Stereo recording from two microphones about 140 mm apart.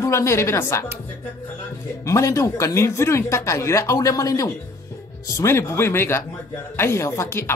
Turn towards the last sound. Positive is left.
turn(degrees=20)  # may be behind; listen again after turning